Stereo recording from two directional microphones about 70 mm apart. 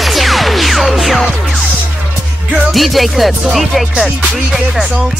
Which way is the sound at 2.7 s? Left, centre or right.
Centre.